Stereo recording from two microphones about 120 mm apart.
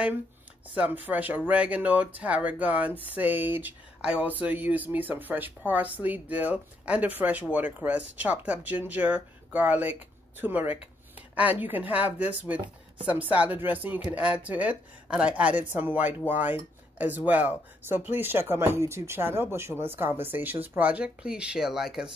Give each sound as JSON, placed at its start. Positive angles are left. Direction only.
{"t": 0.7, "sound": "speech", "side_deg": -15}